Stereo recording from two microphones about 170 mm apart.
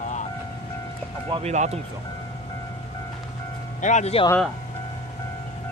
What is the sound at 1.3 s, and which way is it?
Speech, 40° right (ahead or behind).